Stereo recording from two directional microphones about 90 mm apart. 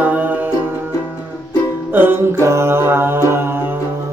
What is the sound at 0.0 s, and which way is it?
Music, 20° right (ahead or behind).